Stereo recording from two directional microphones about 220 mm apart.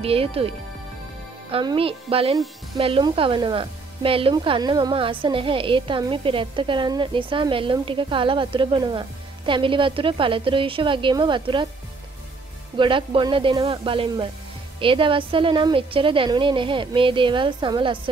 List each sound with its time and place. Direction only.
0.0 s speech: 25° right (ahead or behind)
12.7 s speech: 20° right (ahead or behind)